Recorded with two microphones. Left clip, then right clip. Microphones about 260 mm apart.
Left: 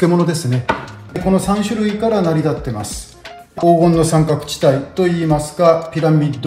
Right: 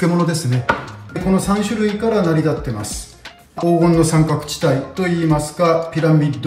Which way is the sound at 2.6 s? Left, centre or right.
Centre.